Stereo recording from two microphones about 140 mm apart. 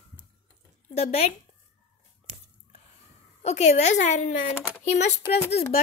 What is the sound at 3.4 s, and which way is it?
A woman's voice, 50° left (ahead or behind).